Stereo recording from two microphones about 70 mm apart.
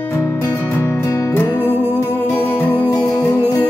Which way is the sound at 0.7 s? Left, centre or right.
Left.